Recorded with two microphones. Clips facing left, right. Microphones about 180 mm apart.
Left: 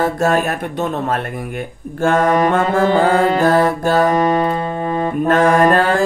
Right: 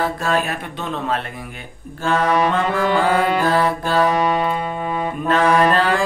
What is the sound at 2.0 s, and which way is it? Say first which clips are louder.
Music: left 4 dB; 50° left (ahead or behind).